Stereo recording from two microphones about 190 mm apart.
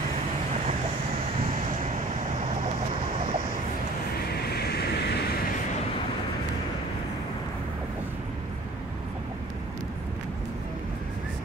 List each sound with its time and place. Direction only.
4.3 s vehicle: 55° left (ahead or behind)